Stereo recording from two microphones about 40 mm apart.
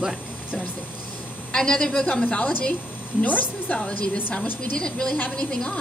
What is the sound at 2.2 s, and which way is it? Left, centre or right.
Speech, left.